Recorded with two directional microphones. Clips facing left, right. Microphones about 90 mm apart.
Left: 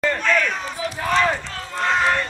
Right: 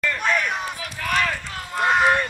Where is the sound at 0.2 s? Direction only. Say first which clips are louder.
Even; 15° right (ahead or behind).